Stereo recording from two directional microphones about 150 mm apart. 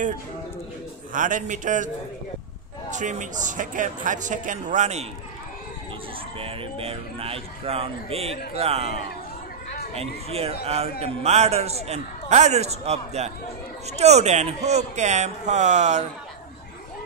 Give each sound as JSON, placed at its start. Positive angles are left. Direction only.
{"t": 1.1, "sound": "speech", "side_deg": -60}
{"t": 2.9, "sound": "speech", "side_deg": -55}
{"t": 6.4, "sound": "a man's voice", "side_deg": -40}